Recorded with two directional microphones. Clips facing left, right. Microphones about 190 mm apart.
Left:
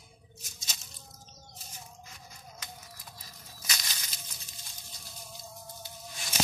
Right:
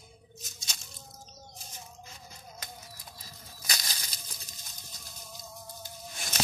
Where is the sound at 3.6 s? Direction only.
35° right (ahead or behind).